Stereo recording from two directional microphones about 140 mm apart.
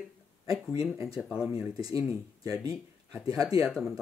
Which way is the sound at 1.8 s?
25° right (ahead or behind).